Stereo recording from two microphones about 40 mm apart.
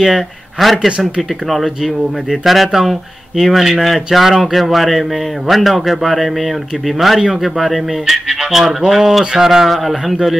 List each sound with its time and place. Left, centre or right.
0.0 s speech: centre
0.8 s speech: right
1.5 s speech: centre
9.7 s speech: centre